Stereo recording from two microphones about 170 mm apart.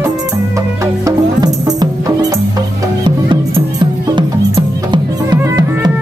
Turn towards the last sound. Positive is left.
turn(degrees=-25)  # may be behind; listen again after turning